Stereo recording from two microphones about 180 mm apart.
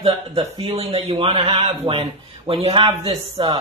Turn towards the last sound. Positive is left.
turn(degrees=-30)  # may be behind; listen again after turning